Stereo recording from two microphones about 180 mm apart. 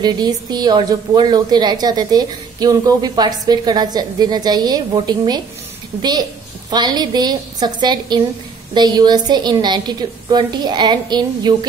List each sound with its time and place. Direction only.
0.0 s a woman's voice: 25° right (ahead or behind)
6.7 s a woman's voice: 25° right (ahead or behind)